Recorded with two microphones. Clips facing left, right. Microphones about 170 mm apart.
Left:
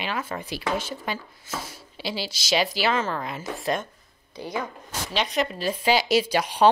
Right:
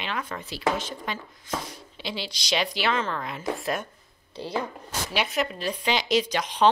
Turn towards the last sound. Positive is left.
turn(degrees=10)  # may be behind; listen again after turning